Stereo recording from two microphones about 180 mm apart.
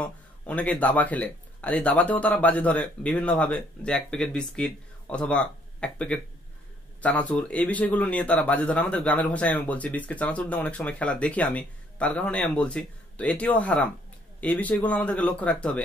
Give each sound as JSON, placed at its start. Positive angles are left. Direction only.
{"t": 0.0, "sound": "a man's voice", "side_deg": 10}